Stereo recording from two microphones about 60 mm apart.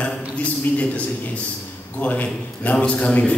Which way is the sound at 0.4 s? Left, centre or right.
Left.